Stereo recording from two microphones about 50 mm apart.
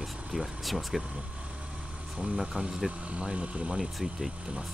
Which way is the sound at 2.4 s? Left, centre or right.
Centre.